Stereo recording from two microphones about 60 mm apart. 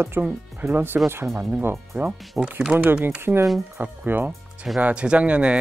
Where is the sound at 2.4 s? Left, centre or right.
Centre.